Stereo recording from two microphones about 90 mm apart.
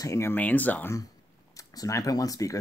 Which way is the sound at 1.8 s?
40° left (ahead or behind).